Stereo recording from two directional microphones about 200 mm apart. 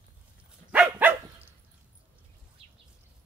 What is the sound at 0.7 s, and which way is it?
Dog, 5° right (ahead or behind).